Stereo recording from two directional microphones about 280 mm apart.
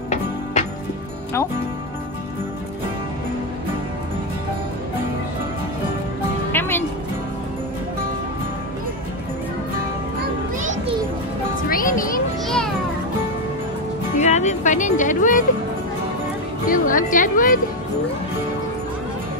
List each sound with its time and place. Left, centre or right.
6.5 s music: centre
11.7 s music: left
14.1 s music: left
16.6 s music: left